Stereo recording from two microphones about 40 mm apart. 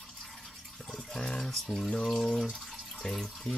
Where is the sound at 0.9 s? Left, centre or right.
Left.